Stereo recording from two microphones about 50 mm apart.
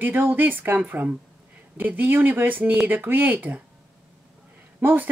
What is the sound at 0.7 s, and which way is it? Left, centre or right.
A woman's voice, right.